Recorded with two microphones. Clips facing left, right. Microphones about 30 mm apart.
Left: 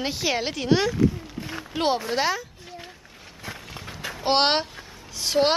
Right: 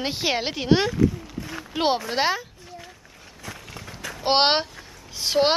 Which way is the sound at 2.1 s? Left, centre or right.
Right.